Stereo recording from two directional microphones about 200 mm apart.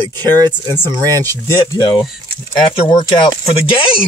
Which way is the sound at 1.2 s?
20° left (ahead or behind).